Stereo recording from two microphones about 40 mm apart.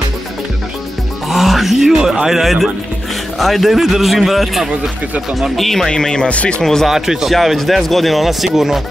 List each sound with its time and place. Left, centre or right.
1.3 s speech: centre
5.9 s speech: centre
6.6 s speech: centre
6.9 s a man's voice: centre
7.3 s speech: centre